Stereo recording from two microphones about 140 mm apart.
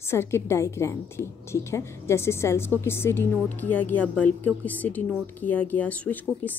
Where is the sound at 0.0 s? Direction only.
20° left (ahead or behind).